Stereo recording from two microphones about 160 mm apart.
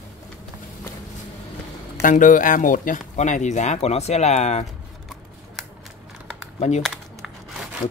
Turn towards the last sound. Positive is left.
turn(degrees=0)  # may be behind; listen again after turning